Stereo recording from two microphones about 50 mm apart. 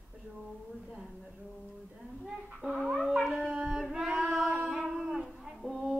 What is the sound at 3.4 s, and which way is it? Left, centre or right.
Howl, centre.